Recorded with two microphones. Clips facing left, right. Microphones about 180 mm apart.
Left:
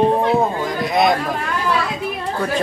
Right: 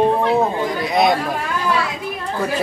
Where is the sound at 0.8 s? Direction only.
Centre (ahead or behind).